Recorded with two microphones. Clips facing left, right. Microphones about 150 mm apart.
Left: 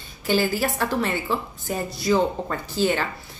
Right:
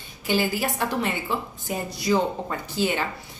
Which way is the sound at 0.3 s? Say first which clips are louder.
Left 2 dB; 15° right (ahead or behind).